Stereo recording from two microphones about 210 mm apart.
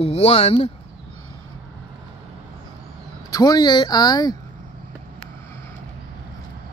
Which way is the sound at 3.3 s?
20° left (ahead or behind).